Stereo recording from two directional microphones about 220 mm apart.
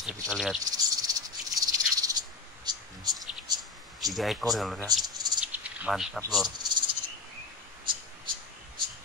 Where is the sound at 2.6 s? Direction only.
20° right (ahead or behind).